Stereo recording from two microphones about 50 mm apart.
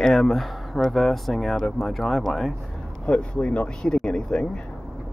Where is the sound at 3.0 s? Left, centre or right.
Left.